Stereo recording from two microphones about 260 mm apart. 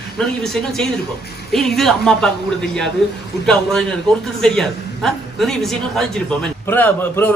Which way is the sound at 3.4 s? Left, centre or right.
Centre.